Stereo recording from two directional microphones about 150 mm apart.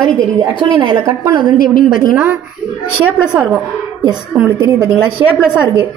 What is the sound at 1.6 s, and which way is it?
Speech, 70° left (ahead or behind).